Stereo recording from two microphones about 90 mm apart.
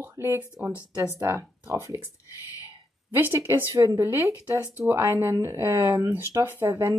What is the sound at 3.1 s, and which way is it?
Speech, 25° right (ahead or behind).